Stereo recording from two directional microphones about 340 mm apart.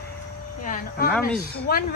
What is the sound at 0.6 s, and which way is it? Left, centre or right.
Speech, left.